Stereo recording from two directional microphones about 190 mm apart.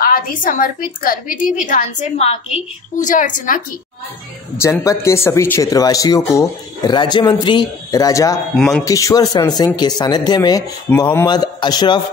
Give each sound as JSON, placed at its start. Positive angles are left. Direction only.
{"t": 0.0, "sound": "a woman's voice", "side_deg": 45}
{"t": 4.6, "sound": "speech", "side_deg": 15}
{"t": 8.5, "sound": "speech", "side_deg": 0}
{"t": 8.8, "sound": "speech", "side_deg": 15}
{"t": 10.9, "sound": "speech", "side_deg": 10}
{"t": 11.2, "sound": "speech", "side_deg": 20}